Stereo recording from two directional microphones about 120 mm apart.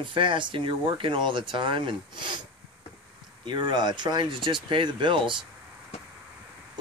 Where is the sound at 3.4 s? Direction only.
40° right (ahead or behind).